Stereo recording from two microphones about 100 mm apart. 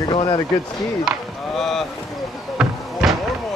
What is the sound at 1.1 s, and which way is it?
Speech, 5° right (ahead or behind).